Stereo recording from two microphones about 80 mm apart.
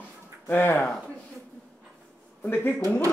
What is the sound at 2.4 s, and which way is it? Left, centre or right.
Speech, left.